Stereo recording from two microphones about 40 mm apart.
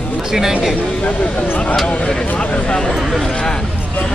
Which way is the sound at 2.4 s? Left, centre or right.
Left.